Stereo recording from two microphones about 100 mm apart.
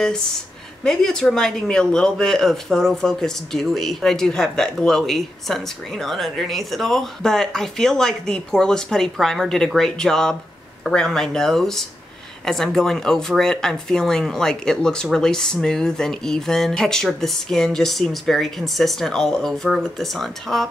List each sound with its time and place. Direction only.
0.8 s speech: 5° left (ahead or behind)